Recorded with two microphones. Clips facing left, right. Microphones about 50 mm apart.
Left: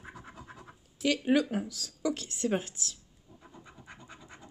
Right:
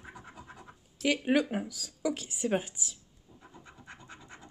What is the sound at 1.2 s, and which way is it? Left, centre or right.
Speech, centre.